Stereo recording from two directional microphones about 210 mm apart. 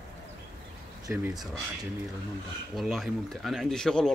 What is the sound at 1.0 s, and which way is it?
Speech, 15° right (ahead or behind).